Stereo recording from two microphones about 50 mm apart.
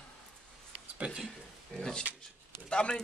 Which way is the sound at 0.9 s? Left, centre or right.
Right.